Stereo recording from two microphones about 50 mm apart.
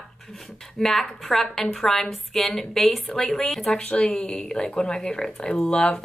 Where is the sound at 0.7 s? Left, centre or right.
Centre.